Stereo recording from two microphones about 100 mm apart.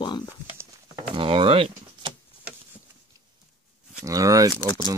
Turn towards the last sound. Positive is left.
turn(degrees=45)  # may be behind; listen again after turning